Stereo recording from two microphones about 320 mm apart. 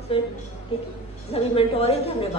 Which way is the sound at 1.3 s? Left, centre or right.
Centre.